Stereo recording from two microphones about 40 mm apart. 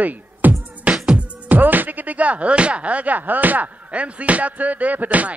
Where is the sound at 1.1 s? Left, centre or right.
Right.